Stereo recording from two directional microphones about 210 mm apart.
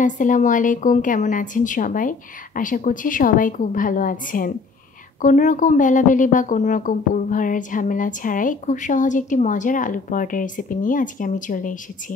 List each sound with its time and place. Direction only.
0.0 s speech: 35° left (ahead or behind)